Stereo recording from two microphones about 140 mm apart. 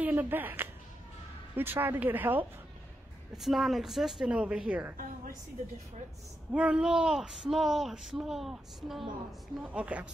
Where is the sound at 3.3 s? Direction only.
Centre (ahead or behind).